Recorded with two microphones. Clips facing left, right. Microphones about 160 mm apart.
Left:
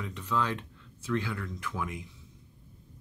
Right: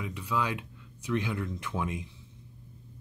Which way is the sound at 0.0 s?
10° right (ahead or behind).